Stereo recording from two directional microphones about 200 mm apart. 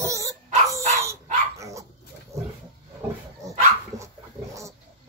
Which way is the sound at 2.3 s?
15° right (ahead or behind).